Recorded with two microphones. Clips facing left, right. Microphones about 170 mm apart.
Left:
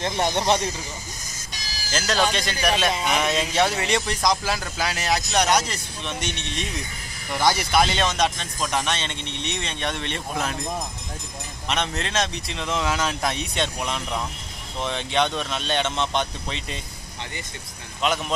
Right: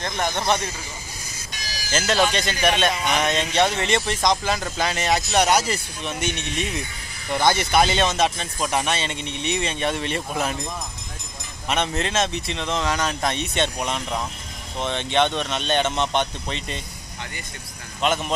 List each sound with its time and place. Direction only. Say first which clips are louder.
0.0 s speech: left 2 dB; 30° left (ahead or behind)
2.0 s speech: right 2 dB; centre (ahead or behind)
11.7 s speech: right 3 dB; 5° right (ahead or behind)
18.0 s speech: right 2 dB; centre (ahead or behind)